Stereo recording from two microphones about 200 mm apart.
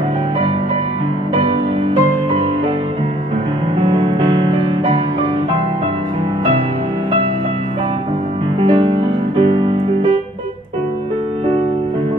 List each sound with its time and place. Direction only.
3.8 s music: 30° right (ahead or behind)
8.6 s music: 30° right (ahead or behind)